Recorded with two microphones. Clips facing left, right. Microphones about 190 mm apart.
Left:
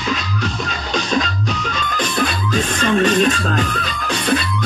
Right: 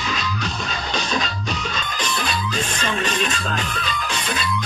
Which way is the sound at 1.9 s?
50° left (ahead or behind).